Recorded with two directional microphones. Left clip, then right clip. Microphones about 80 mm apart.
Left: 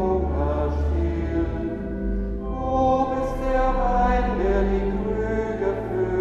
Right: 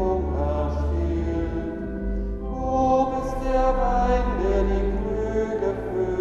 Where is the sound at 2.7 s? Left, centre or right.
Right.